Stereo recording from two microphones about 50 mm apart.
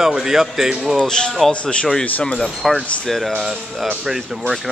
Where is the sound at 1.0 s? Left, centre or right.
Centre.